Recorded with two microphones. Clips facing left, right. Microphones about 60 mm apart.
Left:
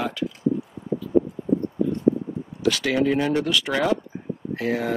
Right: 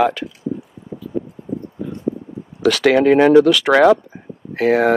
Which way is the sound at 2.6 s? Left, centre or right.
Right.